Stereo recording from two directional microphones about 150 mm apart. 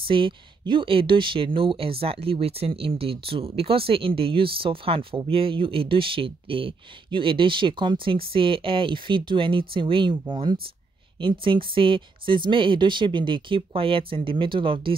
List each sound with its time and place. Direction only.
0.0 s speech: 35° right (ahead or behind)